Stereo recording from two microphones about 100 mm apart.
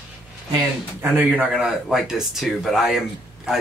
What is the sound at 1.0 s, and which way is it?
Speech, 15° right (ahead or behind).